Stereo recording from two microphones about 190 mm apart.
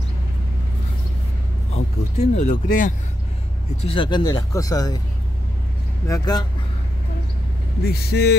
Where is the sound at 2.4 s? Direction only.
40° left (ahead or behind).